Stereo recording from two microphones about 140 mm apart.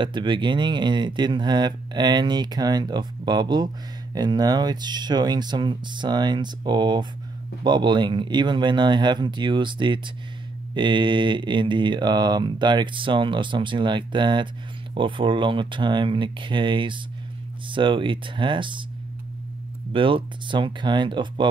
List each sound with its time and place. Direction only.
0.0 s speech: 35° right (ahead or behind)
19.9 s speech: 40° right (ahead or behind)